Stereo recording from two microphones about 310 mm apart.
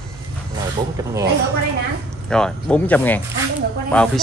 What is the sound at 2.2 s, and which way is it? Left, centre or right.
Speech, centre.